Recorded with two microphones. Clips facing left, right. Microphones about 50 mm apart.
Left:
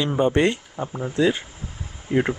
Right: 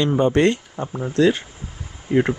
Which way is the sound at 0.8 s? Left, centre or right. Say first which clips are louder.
Left 1 dB; centre.